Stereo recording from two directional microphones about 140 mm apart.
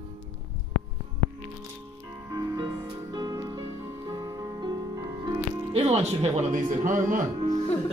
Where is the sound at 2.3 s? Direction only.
25° right (ahead or behind).